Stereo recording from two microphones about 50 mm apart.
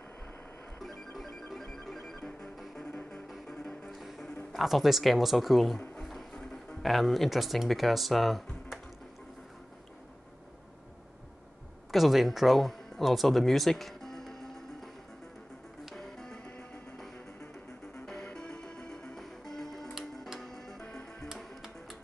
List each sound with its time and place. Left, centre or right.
0.7 s music: centre
2.5 s music: centre
3.9 s music: centre
4.5 s speech: centre
6.3 s music: centre
6.8 s speech: centre
11.9 s speech: centre
16.0 s music: centre
18.0 s music: centre
19.1 s music: centre